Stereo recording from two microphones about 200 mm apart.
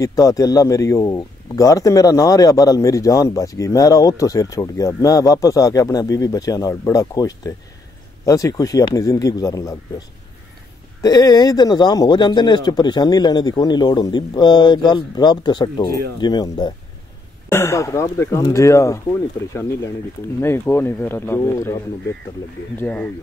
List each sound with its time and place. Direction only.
0.0 s a man's voice: 15° left (ahead or behind)
20.3 s a man's voice: 10° left (ahead or behind)
22.8 s a man's voice: 10° left (ahead or behind)